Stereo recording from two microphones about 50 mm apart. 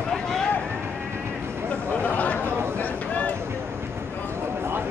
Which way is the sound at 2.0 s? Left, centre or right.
Left.